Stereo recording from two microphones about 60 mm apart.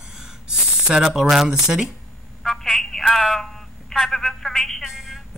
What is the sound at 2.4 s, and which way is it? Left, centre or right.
Telephone, centre.